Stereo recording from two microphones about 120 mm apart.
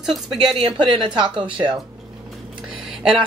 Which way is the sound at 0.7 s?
40° right (ahead or behind).